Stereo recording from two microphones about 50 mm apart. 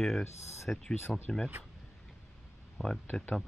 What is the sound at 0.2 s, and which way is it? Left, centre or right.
Speech, left.